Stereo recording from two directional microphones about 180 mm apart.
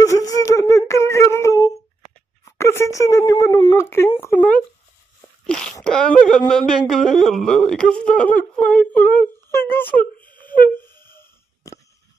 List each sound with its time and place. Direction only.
0.0 s a sound: 20° left (ahead or behind)
2.4 s speech: 15° left (ahead or behind)
5.5 s a sound: 5° left (ahead or behind)
5.9 s speech: 5° left (ahead or behind)
10.3 s wind instrument: 10° left (ahead or behind)
11.1 s wheeze: 15° left (ahead or behind)